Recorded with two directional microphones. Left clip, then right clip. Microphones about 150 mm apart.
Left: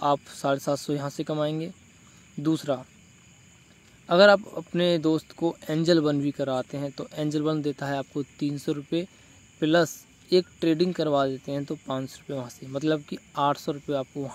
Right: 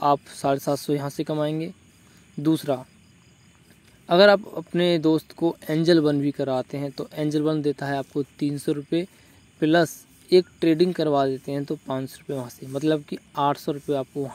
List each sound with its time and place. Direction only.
0.0 s speech: 15° right (ahead or behind)
4.0 s speech: 15° right (ahead or behind)